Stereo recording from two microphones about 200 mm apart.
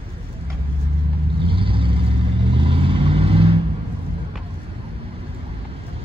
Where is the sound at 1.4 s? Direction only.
25° right (ahead or behind).